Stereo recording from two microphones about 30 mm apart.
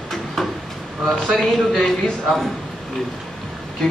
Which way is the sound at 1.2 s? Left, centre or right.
Centre.